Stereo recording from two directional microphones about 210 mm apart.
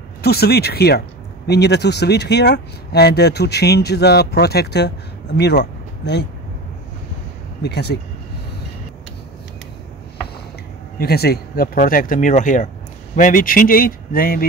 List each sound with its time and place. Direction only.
0.2 s speech: 50° left (ahead or behind)
7.6 s speech: 55° left (ahead or behind)
11.0 s speech: 50° left (ahead or behind)